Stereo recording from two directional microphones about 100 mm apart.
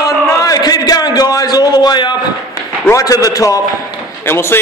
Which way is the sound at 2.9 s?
35° left (ahead or behind).